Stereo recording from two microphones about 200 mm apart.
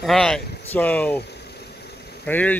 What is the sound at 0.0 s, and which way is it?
Speech, centre (ahead or behind).